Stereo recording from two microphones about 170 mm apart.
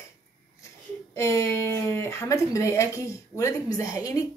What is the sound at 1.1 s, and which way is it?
Speech, 15° left (ahead or behind).